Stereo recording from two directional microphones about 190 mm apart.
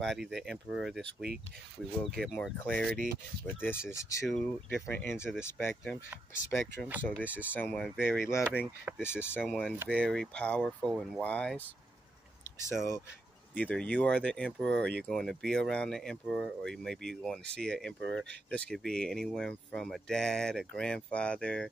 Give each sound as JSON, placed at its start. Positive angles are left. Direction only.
{"t": 0.0, "sound": "speech", "side_deg": 0}
{"t": 4.3, "sound": "speech", "side_deg": 5}
{"t": 9.0, "sound": "speech", "side_deg": 10}